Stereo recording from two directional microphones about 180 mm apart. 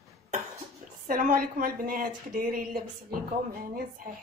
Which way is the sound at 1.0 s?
50° right (ahead or behind).